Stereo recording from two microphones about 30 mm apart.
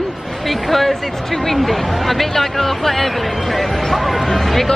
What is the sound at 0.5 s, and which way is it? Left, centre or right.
A woman's voice, centre.